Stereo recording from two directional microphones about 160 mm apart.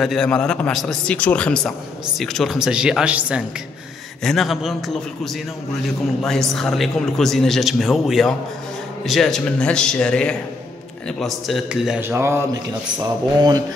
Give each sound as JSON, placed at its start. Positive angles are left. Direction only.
{"t": 0.0, "sound": "speech", "side_deg": 0}
{"t": 6.5, "sound": "a man's voice", "side_deg": 0}